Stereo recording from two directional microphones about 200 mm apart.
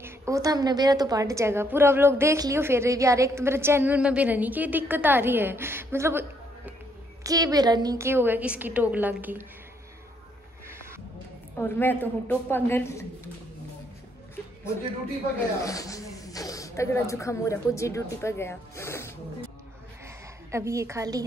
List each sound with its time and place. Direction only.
0.0 s a woman's voice: 15° right (ahead or behind)
10.7 s music: 10° right (ahead or behind)
11.5 s a woman's voice: 10° left (ahead or behind)
15.3 s a woman's voice: 15° left (ahead or behind)
20.5 s a woman's voice: 15° right (ahead or behind)